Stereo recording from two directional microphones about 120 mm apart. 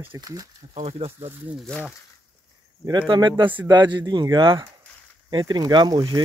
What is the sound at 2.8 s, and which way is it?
Speech, 45° right (ahead or behind).